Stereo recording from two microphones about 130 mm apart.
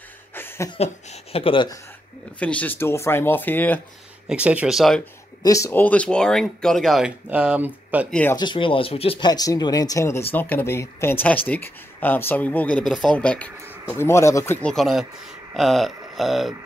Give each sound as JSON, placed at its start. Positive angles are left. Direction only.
{"t": 0.3, "sound": "a sound", "side_deg": 15}
{"t": 0.7, "sound": "speech", "side_deg": 55}
{"t": 2.3, "sound": "speech", "side_deg": 10}
{"t": 4.3, "sound": "speech", "side_deg": -10}
{"t": 5.4, "sound": "speech", "side_deg": 25}
{"t": 8.1, "sound": "speech", "side_deg": 15}
{"t": 8.4, "sound": "speech", "side_deg": 40}
{"t": 9.2, "sound": "speech", "side_deg": 30}
{"t": 13.8, "sound": "speech", "side_deg": 20}
{"t": 14.6, "sound": "speech", "side_deg": 5}